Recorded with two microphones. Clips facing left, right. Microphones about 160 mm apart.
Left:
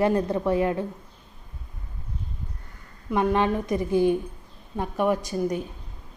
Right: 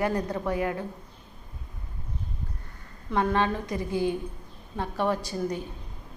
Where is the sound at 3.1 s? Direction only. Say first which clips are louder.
Left 3 dB; 15° left (ahead or behind).